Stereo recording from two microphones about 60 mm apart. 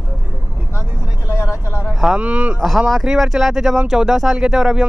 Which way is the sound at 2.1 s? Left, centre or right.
Centre.